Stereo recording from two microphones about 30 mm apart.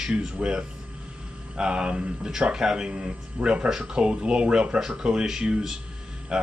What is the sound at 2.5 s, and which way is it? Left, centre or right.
Speech, right.